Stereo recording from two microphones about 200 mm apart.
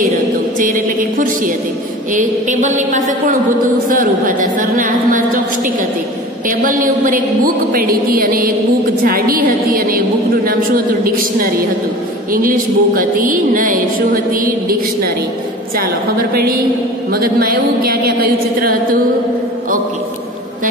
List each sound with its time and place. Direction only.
0.6 s a sound: 45° right (ahead or behind)
2.1 s a woman's voice: 40° right (ahead or behind)
6.6 s a woman's voice: 40° right (ahead or behind)
17.1 s a woman's voice: 50° right (ahead or behind)